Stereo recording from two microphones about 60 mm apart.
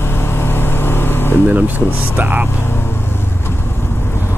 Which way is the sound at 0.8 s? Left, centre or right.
Left.